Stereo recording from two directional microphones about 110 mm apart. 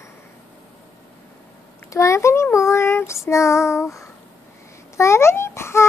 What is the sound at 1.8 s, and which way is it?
Child singing, 30° left (ahead or behind).